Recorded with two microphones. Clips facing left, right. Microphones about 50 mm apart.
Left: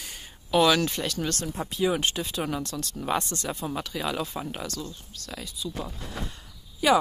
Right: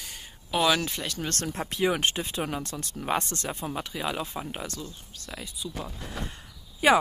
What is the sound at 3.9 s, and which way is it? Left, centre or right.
Speech, centre.